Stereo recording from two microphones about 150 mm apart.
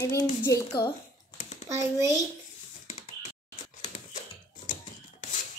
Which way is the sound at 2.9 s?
50° left (ahead or behind).